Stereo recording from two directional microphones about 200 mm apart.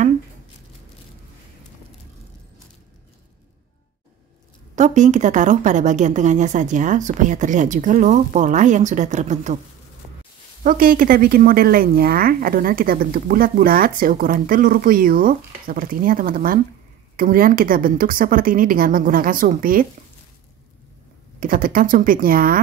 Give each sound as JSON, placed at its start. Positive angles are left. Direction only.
{"t": 4.7, "sound": "a woman's voice", "side_deg": -35}
{"t": 10.6, "sound": "a woman's voice", "side_deg": -45}
{"t": 21.4, "sound": "a woman's voice", "side_deg": -45}